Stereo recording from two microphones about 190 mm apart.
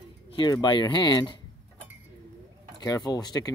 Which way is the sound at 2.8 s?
20° left (ahead or behind).